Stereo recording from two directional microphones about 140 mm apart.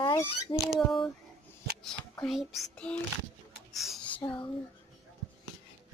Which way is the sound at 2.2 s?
Centre (ahead or behind).